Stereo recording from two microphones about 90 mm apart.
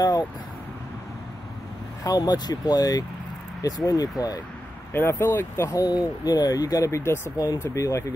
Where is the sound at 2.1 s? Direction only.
50° left (ahead or behind).